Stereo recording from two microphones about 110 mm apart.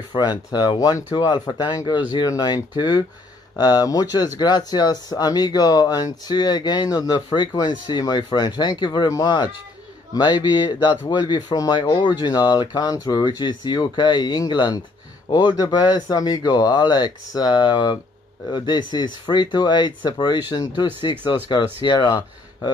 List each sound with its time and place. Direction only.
0.1 s speech: 40° left (ahead or behind)